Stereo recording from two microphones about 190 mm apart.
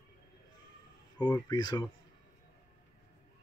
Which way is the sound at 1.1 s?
20° left (ahead or behind).